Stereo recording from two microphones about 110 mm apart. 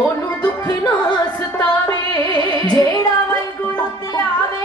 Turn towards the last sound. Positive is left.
turn(degrees=35)  # may be behind; listen again after turning